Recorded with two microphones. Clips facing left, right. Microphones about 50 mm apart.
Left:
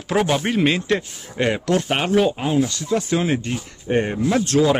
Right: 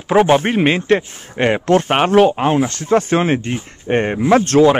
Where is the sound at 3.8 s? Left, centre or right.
Right.